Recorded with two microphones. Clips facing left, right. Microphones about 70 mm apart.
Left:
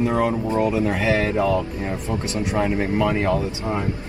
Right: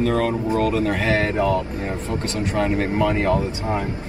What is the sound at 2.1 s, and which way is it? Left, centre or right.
Speech, left.